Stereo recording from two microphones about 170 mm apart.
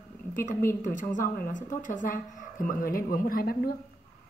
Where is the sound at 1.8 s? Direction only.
50° left (ahead or behind).